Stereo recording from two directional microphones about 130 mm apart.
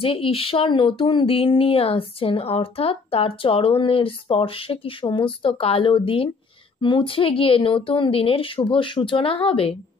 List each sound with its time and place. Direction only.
0.0 s speech: 45° left (ahead or behind)